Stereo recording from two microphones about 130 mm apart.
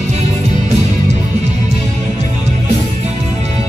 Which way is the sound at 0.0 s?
60° right (ahead or behind).